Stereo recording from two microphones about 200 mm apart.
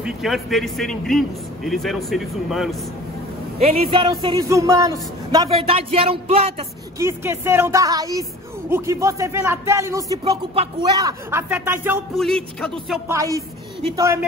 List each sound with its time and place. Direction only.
0.0 s speech: centre (ahead or behind)
3.5 s speech: 30° right (ahead or behind)
7.0 s speech: 15° right (ahead or behind)
10.5 s speech: 30° right (ahead or behind)
11.0 s speech: 15° right (ahead or behind)
12.1 s speech: centre (ahead or behind)
13.9 s speech: 15° right (ahead or behind)